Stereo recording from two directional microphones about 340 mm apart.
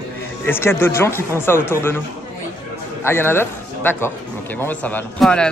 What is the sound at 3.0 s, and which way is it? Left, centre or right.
A man's voice, centre.